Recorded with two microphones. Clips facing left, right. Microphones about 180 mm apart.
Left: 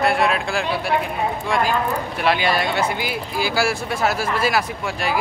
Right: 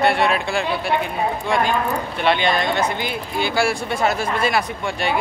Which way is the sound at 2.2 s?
5° left (ahead or behind).